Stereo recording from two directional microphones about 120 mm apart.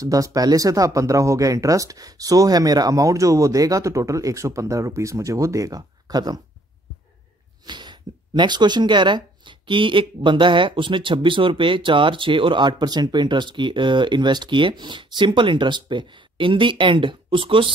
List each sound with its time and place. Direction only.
0.0 s speech: 30° right (ahead or behind)
7.6 s speech: 40° right (ahead or behind)